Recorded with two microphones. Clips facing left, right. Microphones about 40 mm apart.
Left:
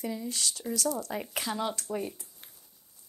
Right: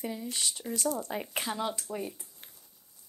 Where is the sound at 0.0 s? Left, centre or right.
Centre.